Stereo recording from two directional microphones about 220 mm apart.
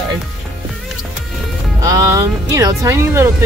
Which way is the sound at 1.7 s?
15° right (ahead or behind).